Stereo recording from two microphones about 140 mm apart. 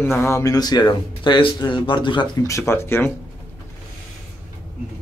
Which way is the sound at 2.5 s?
20° left (ahead or behind).